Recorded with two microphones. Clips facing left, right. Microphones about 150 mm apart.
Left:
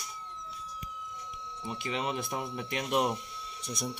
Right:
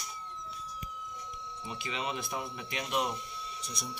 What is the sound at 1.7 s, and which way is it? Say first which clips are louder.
Speech: left 3 dB; 50° left (ahead or behind).